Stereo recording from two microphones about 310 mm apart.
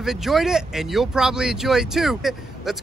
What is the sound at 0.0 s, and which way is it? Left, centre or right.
Speech, centre.